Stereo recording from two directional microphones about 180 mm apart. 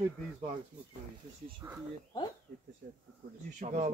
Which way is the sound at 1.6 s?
15° right (ahead or behind).